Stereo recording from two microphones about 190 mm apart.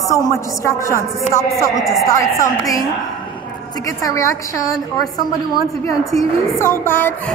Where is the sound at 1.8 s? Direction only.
Centre (ahead or behind).